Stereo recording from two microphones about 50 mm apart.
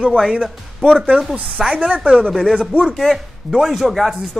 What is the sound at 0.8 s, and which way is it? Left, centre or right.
Speech, centre.